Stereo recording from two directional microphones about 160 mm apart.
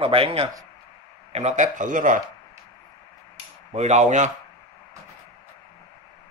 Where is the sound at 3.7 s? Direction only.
45° right (ahead or behind).